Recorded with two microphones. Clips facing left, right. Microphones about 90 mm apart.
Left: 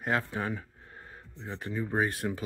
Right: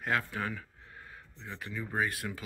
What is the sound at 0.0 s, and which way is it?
Speech, 25° left (ahead or behind).